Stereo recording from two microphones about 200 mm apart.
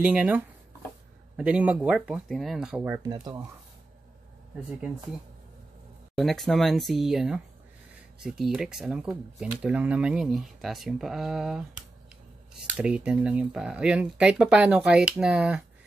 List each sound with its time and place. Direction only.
0.0 s speech: 10° right (ahead or behind)
6.1 s speech: centre (ahead or behind)